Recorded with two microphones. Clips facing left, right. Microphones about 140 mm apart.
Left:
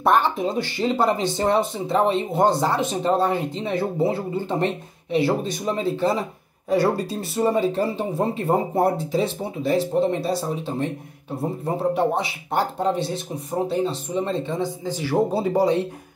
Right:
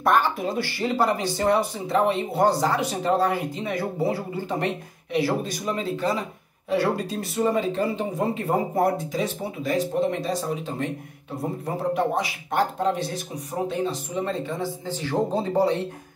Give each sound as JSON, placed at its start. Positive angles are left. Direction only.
{"t": 0.0, "sound": "speech", "side_deg": 25}